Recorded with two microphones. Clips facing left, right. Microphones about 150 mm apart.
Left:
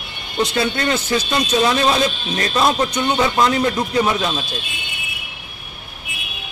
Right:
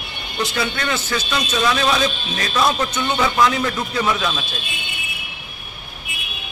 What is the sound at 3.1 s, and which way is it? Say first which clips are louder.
Speech: even; 25° left (ahead or behind).